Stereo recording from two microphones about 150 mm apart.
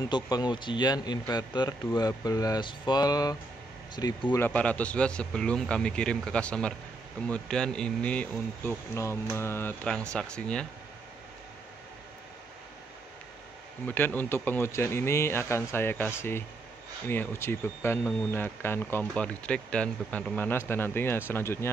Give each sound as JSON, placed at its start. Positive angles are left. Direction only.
{"t": 0.1, "sound": "a man's voice", "side_deg": 30}
{"t": 4.4, "sound": "speech", "side_deg": 10}
{"t": 13.8, "sound": "speech", "side_deg": 15}